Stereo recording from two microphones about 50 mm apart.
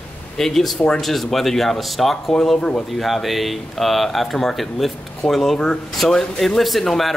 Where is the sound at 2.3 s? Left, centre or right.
Centre.